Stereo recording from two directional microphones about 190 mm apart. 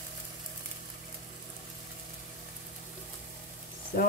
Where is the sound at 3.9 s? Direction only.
55° left (ahead or behind).